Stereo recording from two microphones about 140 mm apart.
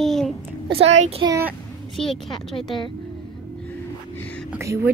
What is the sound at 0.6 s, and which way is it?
Speech, 40° right (ahead or behind).